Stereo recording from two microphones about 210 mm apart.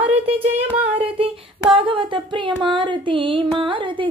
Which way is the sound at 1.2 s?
25° right (ahead or behind).